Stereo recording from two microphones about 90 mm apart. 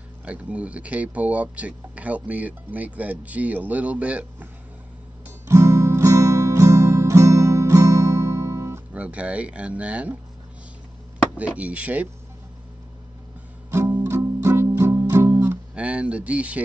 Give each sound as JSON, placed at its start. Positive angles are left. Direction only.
{"t": 0.2, "sound": "speech", "side_deg": -15}
{"t": 5.5, "sound": "music", "side_deg": -30}
{"t": 8.9, "sound": "speech", "side_deg": -15}
{"t": 11.3, "sound": "speech", "side_deg": -15}
{"t": 14.0, "sound": "music", "side_deg": -30}
{"t": 15.7, "sound": "a sound", "side_deg": -10}